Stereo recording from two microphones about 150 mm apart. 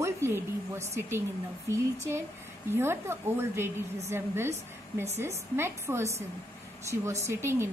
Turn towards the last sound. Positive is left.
turn(degrees=-15)  # may be behind; listen again after turning